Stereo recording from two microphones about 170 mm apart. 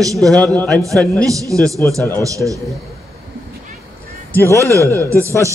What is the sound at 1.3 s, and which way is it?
A man's voice, 20° right (ahead or behind).